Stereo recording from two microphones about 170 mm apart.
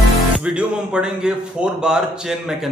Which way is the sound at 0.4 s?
5° right (ahead or behind).